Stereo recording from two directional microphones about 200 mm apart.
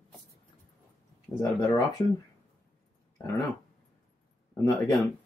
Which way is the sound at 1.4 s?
15° left (ahead or behind).